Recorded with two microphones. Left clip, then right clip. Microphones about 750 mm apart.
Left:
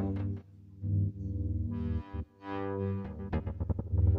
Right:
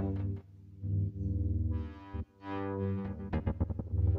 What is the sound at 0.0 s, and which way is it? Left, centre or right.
Music, right.